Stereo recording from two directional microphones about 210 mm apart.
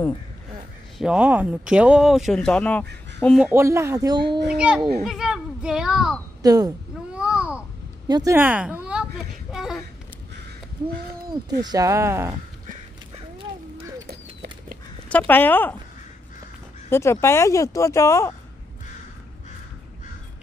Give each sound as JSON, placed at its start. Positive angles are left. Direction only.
{"t": 0.9, "sound": "speech", "side_deg": -5}
{"t": 3.5, "sound": "speech", "side_deg": -15}
{"t": 4.5, "sound": "speech", "side_deg": -5}
{"t": 6.4, "sound": "speech", "side_deg": -15}
{"t": 7.1, "sound": "babbling", "side_deg": -5}
{"t": 8.1, "sound": "speech", "side_deg": -15}
{"t": 9.5, "sound": "a sound", "side_deg": 0}
{"t": 11.6, "sound": "speech", "side_deg": -15}
{"t": 14.0, "sound": "bird", "side_deg": -50}
{"t": 15.0, "sound": "speech", "side_deg": 5}
{"t": 16.9, "sound": "speech", "side_deg": 10}